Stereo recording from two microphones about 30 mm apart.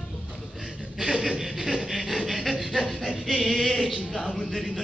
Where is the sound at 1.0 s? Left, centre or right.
Right.